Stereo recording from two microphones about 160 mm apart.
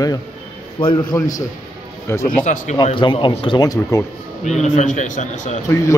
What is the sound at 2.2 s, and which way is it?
Speech, 50° left (ahead or behind).